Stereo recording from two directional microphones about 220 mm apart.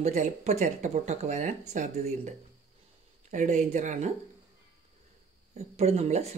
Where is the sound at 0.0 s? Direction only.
30° right (ahead or behind).